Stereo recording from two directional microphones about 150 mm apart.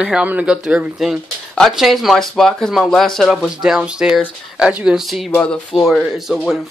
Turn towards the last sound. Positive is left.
turn(degrees=0)  # may be behind; listen again after turning